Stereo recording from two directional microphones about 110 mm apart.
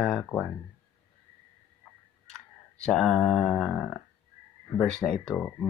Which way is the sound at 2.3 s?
5° left (ahead or behind).